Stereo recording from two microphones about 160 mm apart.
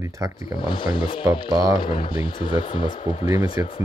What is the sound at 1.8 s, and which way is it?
Speech, 30° left (ahead or behind).